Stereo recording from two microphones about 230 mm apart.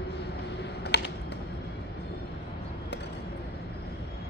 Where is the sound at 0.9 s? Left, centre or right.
Left.